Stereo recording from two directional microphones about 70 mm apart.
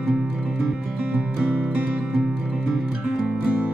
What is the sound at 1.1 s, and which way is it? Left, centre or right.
Music, centre.